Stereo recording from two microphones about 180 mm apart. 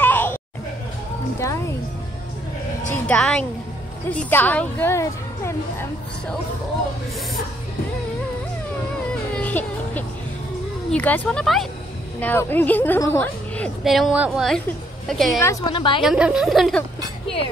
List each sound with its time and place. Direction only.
0.0 s a sound: 10° left (ahead or behind)
1.4 s a woman's voice: 15° left (ahead or behind)
2.9 s a woman's voice: 5° left (ahead or behind)
9.3 s music: 10° left (ahead or behind)
10.9 s a woman's voice: 10° left (ahead or behind)
13.8 s a woman's voice: centre (ahead or behind)
15.3 s a woman's voice: 20° left (ahead or behind)
16.0 s a woman's voice: 5° right (ahead or behind)